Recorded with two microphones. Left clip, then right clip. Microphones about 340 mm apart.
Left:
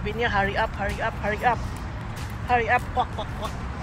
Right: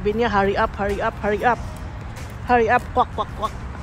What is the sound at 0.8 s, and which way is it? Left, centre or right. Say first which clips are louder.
Speech: right 5 dB; right.